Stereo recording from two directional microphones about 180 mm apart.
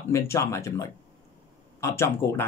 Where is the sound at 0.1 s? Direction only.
15° left (ahead or behind).